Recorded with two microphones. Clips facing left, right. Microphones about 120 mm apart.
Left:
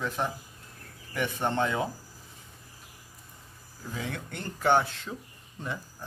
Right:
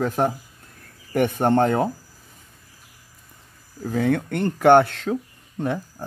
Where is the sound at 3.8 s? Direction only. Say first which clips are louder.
Right 15 dB; 55° right (ahead or behind).